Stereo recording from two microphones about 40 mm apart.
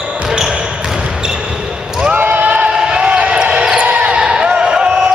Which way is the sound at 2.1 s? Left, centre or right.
Right.